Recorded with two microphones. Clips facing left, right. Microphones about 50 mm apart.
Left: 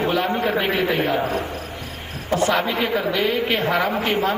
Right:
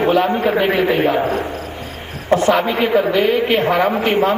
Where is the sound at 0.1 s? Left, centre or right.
Right.